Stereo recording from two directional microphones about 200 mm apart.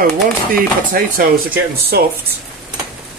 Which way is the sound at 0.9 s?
45° right (ahead or behind).